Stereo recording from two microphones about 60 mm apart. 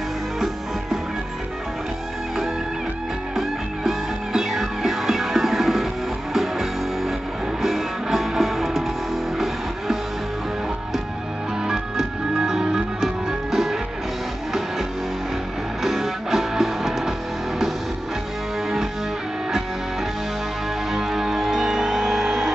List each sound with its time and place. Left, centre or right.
3.3 s music: centre
11.6 s music: centre
15.8 s music: centre
20.9 s music: centre